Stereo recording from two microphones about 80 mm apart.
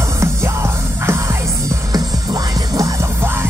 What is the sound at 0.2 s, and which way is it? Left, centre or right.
Music, right.